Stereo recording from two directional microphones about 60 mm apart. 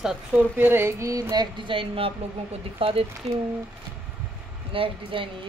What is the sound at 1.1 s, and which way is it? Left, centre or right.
Speech, right.